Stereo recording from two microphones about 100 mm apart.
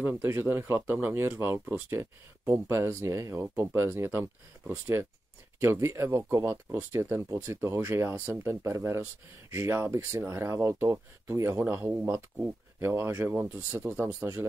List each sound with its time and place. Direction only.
0.0 s speech: 20° right (ahead or behind)